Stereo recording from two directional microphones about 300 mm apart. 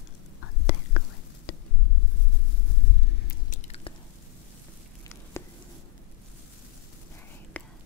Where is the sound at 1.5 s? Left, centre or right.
Left.